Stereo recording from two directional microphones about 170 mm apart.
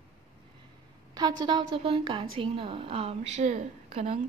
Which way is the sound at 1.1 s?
25° right (ahead or behind).